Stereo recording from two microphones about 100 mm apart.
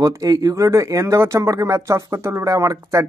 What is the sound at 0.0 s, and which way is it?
Speech, 40° right (ahead or behind).